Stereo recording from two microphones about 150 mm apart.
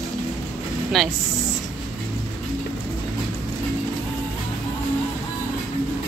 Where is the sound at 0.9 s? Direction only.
Centre (ahead or behind).